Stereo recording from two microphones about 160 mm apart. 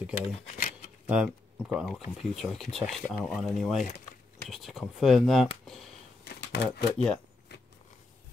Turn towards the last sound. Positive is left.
turn(degrees=90)